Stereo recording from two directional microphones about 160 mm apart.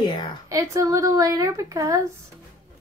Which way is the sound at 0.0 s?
25° left (ahead or behind).